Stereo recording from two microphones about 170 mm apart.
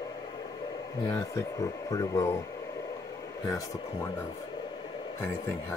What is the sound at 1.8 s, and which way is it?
Speech, 20° left (ahead or behind).